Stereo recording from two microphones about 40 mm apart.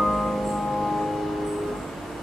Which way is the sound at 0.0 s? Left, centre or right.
Centre.